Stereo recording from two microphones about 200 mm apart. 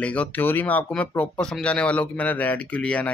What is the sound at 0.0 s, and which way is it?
Speech, 5° left (ahead or behind).